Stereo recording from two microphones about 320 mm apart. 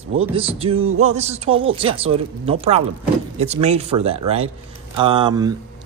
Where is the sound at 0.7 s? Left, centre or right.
Right.